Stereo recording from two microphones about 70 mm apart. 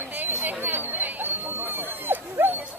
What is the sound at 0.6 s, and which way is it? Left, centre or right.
Dog, right.